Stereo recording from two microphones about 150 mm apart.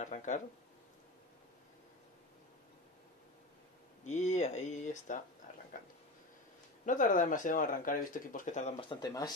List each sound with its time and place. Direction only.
0.0 s speech: 55° left (ahead or behind)
4.0 s speech: 50° left (ahead or behind)
6.9 s speech: 60° left (ahead or behind)
8.8 s speech: 25° left (ahead or behind)